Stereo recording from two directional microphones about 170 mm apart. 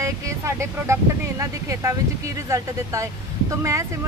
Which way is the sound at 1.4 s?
20° right (ahead or behind).